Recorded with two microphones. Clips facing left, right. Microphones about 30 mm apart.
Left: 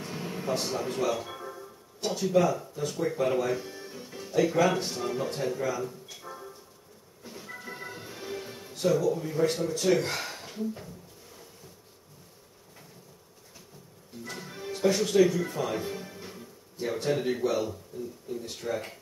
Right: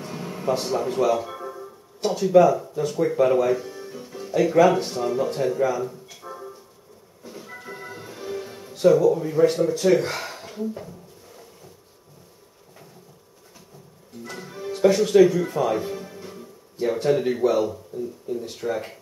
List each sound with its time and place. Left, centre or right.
0.0 s music: centre
2.0 s speech: centre
3.5 s speech: centre
3.9 s music: centre
4.5 s speech: centre
5.6 s music: centre
8.8 s speech: centre
14.2 s music: centre
14.8 s speech: centre